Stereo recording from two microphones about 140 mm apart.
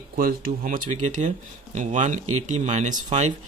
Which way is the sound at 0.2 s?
90° right.